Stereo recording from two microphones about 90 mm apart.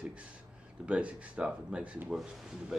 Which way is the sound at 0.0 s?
15° right (ahead or behind).